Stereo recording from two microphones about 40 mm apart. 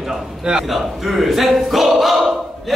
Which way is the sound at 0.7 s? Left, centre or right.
Centre.